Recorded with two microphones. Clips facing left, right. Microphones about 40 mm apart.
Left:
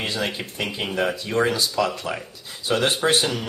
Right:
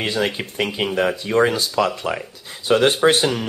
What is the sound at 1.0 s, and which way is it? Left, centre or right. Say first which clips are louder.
Speech: right 4 dB; centre.